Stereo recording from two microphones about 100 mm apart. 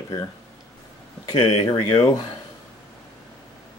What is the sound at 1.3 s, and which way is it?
Speech, 65° left (ahead or behind).